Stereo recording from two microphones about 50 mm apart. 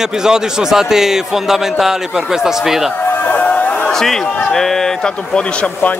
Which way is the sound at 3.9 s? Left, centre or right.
Centre.